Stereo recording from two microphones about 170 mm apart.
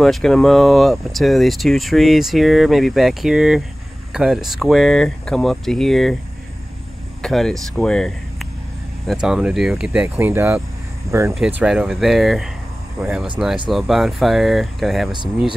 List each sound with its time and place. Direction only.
0.0 s speech: centre (ahead or behind)
7.2 s speech: 5° left (ahead or behind); by 11.3 s 15° right (ahead or behind)
11.3 s speech: 5° right (ahead or behind)